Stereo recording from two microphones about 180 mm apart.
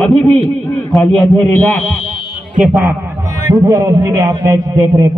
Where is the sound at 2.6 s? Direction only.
10° right (ahead or behind).